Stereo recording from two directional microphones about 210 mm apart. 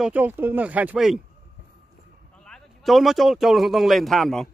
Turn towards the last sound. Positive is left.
turn(degrees=0)  # may be behind; listen again after turning